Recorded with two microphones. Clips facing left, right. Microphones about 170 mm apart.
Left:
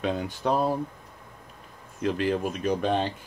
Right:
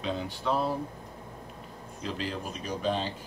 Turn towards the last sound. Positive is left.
turn(degrees=55)  # may be behind; listen again after turning